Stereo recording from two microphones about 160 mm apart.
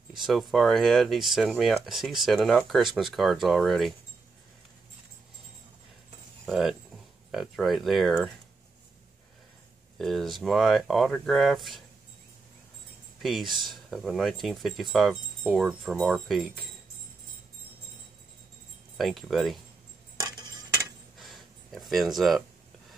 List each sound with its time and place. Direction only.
0.2 s speech: centre (ahead or behind)
6.4 s speech: centre (ahead or behind)
9.9 s speech: centre (ahead or behind)
13.2 s speech: centre (ahead or behind)
18.9 s speech: centre (ahead or behind)
20.2 s a sound: 25° right (ahead or behind)
21.2 s a sound: centre (ahead or behind)